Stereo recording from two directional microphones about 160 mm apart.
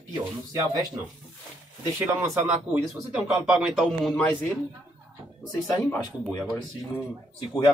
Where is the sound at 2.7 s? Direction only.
5° right (ahead or behind).